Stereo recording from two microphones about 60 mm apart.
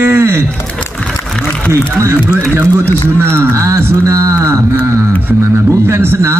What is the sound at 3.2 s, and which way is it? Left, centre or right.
Speech, right.